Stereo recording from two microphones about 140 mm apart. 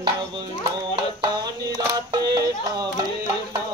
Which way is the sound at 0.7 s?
30° right (ahead or behind).